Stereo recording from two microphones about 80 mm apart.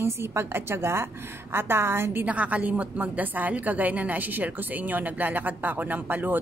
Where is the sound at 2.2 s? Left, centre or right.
Centre.